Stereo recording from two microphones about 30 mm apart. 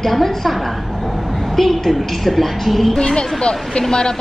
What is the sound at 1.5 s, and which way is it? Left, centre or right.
A woman's voice, centre.